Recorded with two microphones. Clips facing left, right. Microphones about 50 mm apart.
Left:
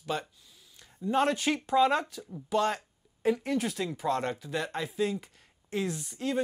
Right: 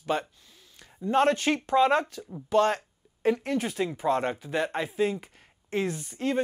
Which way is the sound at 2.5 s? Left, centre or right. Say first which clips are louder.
Right 5 dB; right.